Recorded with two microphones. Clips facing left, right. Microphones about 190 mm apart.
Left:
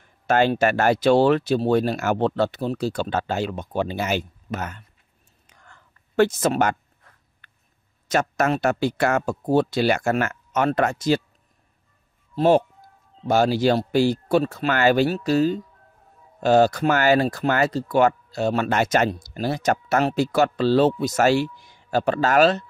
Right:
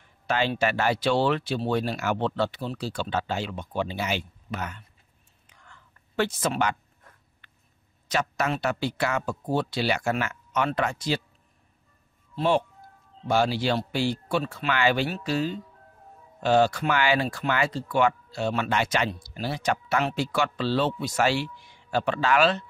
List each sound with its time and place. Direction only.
0.0 s speech: 45° left (ahead or behind)
5.5 s whispering: 45° left (ahead or behind)
7.4 s a sound: 45° left (ahead or behind)
8.1 s speech: 50° left (ahead or behind)
12.4 s speech: 40° left (ahead or behind)